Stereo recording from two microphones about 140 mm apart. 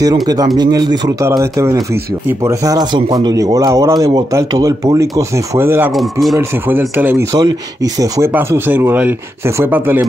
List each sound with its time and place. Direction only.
0.0 s speech: 30° right (ahead or behind)
1.2 s speech: 20° right (ahead or behind)
5.9 s speech: centre (ahead or behind)
6.7 s speech: 15° right (ahead or behind)
7.3 s speech: 25° right (ahead or behind)
8.3 s speech: 15° right (ahead or behind)